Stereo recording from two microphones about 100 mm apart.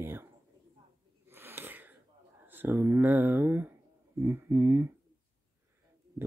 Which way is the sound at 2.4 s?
20° right (ahead or behind).